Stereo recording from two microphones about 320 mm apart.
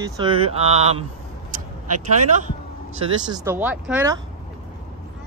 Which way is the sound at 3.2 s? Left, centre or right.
Centre.